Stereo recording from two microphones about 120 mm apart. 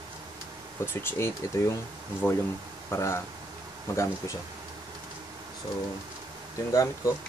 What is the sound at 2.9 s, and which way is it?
Speech, 25° left (ahead or behind).